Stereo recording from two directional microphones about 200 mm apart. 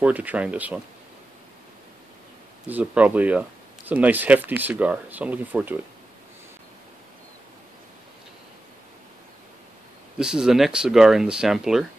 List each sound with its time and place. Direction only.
0.0 s speech: 10° right (ahead or behind)
2.7 s speech: 5° right (ahead or behind)
10.1 s speech: 5° right (ahead or behind)